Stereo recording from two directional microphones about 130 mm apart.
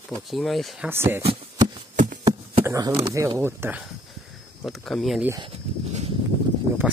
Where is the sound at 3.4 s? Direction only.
15° right (ahead or behind).